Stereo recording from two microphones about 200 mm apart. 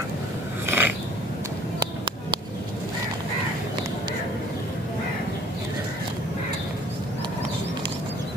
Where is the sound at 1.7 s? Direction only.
25° right (ahead or behind).